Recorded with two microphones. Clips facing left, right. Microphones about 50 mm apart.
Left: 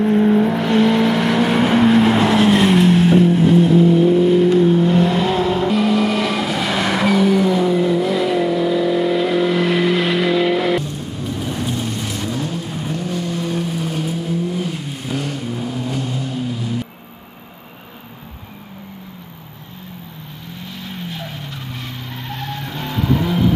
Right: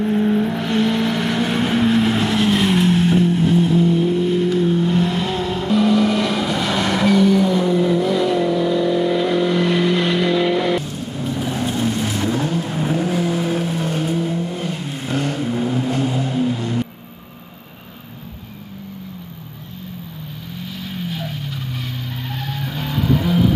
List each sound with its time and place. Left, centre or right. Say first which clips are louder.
0.0 s vehicle: left 4 dB; centre
20.8 s vehicle: right 2 dB; centre